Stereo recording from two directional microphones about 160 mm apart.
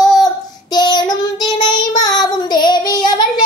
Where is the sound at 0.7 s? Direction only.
25° left (ahead or behind).